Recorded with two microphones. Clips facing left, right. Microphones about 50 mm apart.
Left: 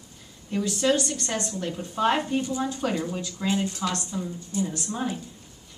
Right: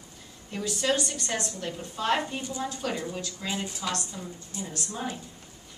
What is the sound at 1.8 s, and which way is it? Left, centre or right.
Speech, centre.